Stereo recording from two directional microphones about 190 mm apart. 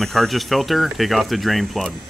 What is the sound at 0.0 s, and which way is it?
Speech, centre (ahead or behind).